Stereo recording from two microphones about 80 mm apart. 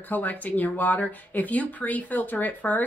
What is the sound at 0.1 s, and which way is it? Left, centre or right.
Speech, left.